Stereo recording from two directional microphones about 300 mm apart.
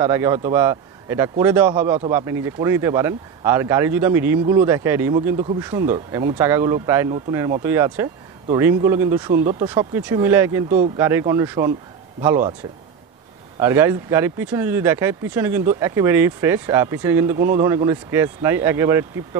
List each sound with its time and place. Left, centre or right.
0.0 s speech: centre
9.3 s speech: right
9.6 s speech: centre
13.6 s speech: centre